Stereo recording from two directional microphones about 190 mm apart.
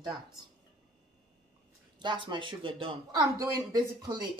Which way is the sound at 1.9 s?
25° right (ahead or behind).